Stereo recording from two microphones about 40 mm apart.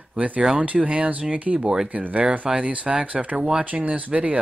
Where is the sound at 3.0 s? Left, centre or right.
Right.